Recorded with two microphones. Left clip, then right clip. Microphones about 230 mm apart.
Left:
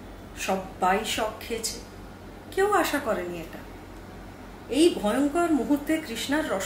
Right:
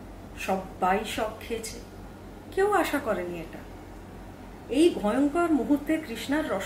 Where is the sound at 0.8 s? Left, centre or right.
Centre.